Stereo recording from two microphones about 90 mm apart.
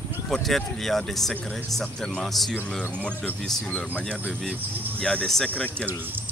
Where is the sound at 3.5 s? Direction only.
15° left (ahead or behind).